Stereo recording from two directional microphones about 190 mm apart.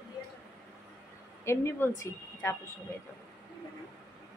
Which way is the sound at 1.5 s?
10° left (ahead or behind).